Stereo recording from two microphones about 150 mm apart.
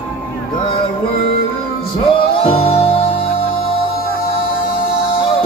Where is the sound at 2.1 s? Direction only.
35° left (ahead or behind).